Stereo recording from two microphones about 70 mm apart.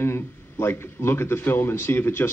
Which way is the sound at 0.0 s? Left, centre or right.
Left.